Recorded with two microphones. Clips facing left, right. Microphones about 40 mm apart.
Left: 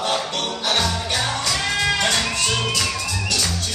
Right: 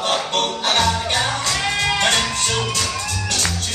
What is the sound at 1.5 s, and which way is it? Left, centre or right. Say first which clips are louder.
Music: left 1 dB; centre.